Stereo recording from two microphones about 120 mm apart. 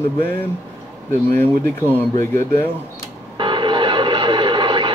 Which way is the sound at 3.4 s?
45° right (ahead or behind).